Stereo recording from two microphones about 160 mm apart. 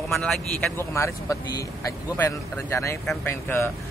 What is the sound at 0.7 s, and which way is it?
A man's voice, 20° left (ahead or behind).